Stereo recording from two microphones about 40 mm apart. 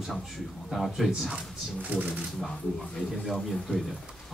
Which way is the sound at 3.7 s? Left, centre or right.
Left.